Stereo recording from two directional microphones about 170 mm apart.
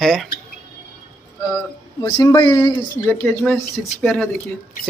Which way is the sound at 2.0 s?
25° left (ahead or behind).